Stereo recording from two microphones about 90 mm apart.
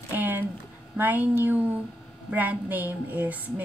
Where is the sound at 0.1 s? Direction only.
20° right (ahead or behind).